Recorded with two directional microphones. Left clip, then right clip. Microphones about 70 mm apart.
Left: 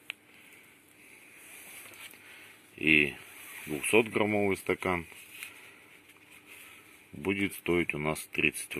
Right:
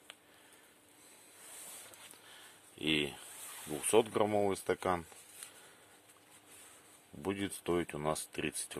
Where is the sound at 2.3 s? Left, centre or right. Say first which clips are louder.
Left 5 dB; right.